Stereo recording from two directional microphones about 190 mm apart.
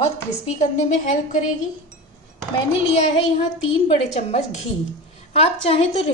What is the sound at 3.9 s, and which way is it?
Speech, 35° left (ahead or behind).